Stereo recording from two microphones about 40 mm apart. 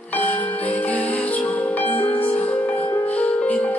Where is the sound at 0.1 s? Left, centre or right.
Left.